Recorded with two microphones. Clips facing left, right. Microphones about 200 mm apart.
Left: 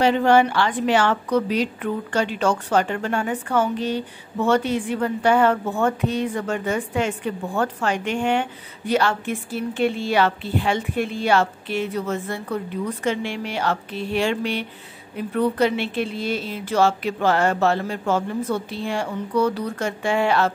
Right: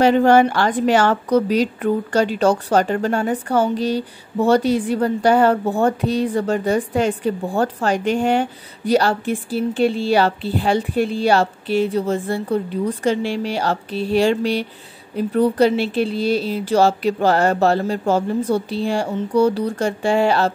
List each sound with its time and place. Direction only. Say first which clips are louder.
0.0 s a woman's voice: right 4 dB; 45° right (ahead or behind)